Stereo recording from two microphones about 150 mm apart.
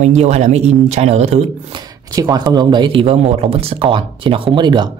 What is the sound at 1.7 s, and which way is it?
Speech, 25° right (ahead or behind).